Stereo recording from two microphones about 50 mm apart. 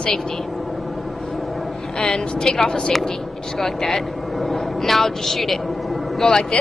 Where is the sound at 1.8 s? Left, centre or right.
Centre.